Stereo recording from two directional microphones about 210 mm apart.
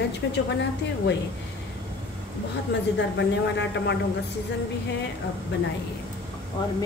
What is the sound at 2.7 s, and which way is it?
Speech, 55° left (ahead or behind).